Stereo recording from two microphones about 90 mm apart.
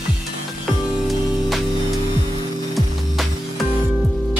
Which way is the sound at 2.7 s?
Centre (ahead or behind).